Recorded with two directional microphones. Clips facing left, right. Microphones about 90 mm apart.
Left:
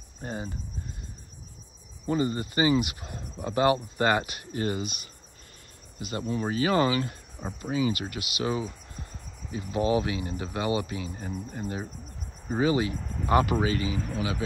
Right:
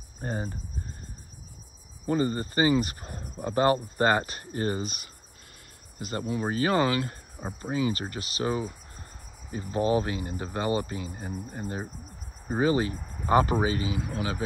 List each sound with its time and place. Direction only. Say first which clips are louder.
0.2 s speech: right 2 dB; 40° right (ahead or behind)
2.0 s speech: right 1 dB; 40° right (ahead or behind)
7.4 s speech: even; 25° right (ahead or behind)
7.7 s speech: left 1 dB; 35° right (ahead or behind)
11.1 s speech: left 1 dB; 20° right (ahead or behind)
12.5 s speech: even; 35° right (ahead or behind)
12.9 s speech: left 4 dB; 15° right (ahead or behind)
13.3 s speech: right 1 dB; 30° right (ahead or behind)
13.8 s speech: left 1 dB; 10° right (ahead or behind)